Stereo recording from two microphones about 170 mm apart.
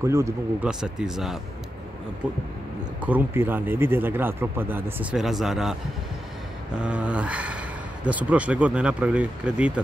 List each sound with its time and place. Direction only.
0.0 s speech: 15° right (ahead or behind)
0.7 s speech: 5° right (ahead or behind)
3.0 s speech: 10° right (ahead or behind)
5.2 s speech: centre (ahead or behind)